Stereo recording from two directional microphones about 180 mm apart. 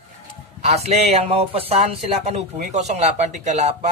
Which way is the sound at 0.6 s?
35° right (ahead or behind).